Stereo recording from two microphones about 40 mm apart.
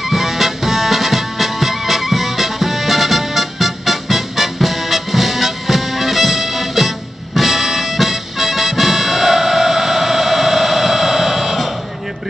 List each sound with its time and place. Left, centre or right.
0.0 s music: centre